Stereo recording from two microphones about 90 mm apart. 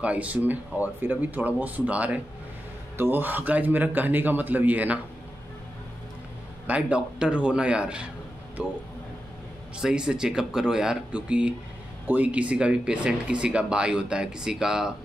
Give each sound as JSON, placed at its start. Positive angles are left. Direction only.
{"t": 0.0, "sound": "a man's voice", "side_deg": -15}
{"t": 6.7, "sound": "speech", "side_deg": -10}
{"t": 9.8, "sound": "speech", "side_deg": -10}